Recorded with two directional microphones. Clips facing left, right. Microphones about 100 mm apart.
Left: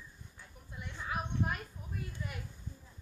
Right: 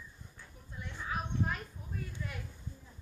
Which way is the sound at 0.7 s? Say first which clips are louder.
Even; 5° left (ahead or behind).